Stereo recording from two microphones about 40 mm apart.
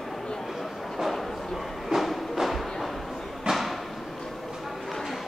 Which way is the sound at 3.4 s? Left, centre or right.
Centre.